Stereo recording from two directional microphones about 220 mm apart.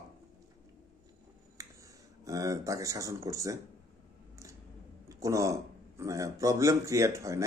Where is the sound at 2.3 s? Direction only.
15° right (ahead or behind).